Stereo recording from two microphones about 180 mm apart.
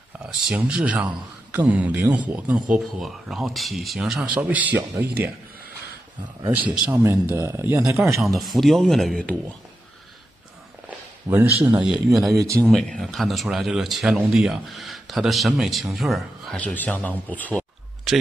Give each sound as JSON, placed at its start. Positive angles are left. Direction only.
{"t": 0.4, "sound": "speech", "side_deg": -5}
{"t": 6.7, "sound": "speech", "side_deg": -15}
{"t": 8.2, "sound": "speech", "side_deg": 0}
{"t": 11.3, "sound": "speech", "side_deg": -15}
{"t": 12.3, "sound": "speech", "side_deg": -20}
{"t": 12.5, "sound": "speech", "side_deg": 5}